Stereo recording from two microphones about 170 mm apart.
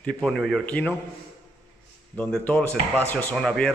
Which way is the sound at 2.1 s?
10° left (ahead or behind).